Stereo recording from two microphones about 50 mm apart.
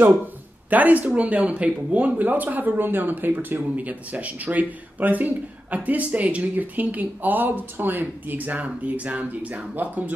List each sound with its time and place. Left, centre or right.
0.7 s speech: right